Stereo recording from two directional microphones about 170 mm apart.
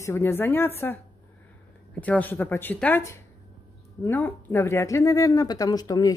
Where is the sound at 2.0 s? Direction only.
10° left (ahead or behind).